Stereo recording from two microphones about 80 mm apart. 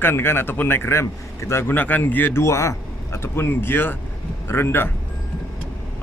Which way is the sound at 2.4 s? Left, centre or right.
Left.